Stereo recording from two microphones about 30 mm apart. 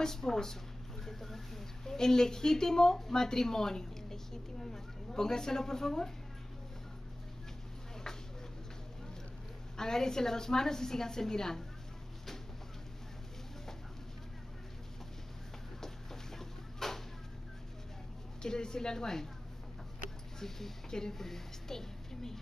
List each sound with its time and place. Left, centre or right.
0.0 s speech: centre
9.8 s a woman's voice: centre
16.3 s a sound: centre
18.4 s a woman's voice: left
20.3 s a woman's voice: centre